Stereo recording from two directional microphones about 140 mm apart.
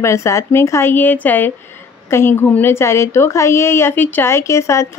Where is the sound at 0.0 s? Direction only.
20° left (ahead or behind).